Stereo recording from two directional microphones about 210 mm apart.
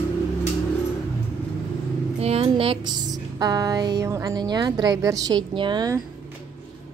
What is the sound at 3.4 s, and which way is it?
Music, 15° right (ahead or behind).